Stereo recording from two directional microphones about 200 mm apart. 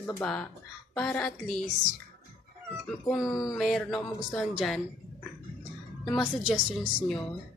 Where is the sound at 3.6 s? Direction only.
Centre (ahead or behind).